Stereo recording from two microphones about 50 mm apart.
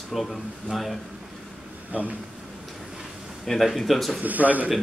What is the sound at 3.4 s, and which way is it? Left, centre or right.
Speech, centre.